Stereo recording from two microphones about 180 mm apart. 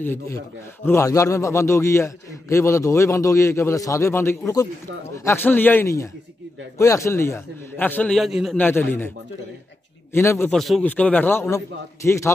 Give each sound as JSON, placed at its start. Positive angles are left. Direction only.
{"t": 0.0, "sound": "a man's voice", "side_deg": 15}
{"t": 8.5, "sound": "a man's voice", "side_deg": 10}
{"t": 10.1, "sound": "a man's voice", "side_deg": 15}
{"t": 10.5, "sound": "a man's voice", "side_deg": 0}